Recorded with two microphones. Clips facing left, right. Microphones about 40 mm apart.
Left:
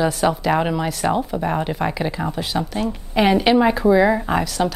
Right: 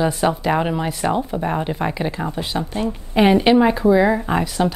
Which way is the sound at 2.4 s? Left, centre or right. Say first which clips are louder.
Even; centre.